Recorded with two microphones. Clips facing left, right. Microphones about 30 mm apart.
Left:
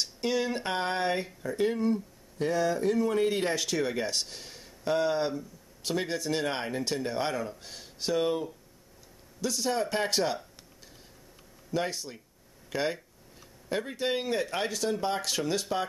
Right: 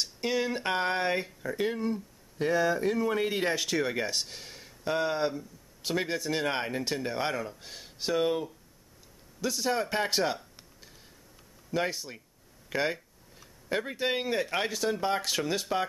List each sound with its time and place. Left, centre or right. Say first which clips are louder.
0.0 s speech: even; centre
11.7 s speech: right 1 dB; centre